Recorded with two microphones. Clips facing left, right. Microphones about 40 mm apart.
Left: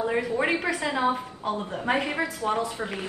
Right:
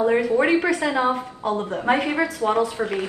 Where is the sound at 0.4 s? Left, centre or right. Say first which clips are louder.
Right 6 dB; centre.